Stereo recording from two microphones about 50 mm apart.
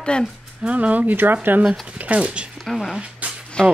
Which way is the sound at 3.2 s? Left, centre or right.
Right.